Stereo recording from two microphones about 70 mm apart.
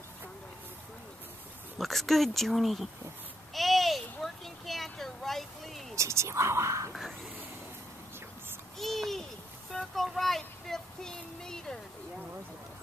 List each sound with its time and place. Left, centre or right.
1.8 s speech: centre
3.5 s a sound: centre
5.9 s speech: right
6.9 s speech: centre
8.7 s a sound: centre
9.7 s speech: centre